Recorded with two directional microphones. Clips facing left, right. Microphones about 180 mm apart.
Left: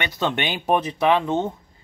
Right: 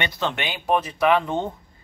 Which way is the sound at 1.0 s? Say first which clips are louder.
Even; 20° left (ahead or behind).